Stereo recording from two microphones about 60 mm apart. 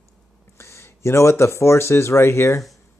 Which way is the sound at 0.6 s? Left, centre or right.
Left.